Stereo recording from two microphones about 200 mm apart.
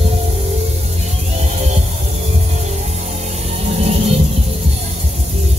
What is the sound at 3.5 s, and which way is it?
Music, 30° right (ahead or behind).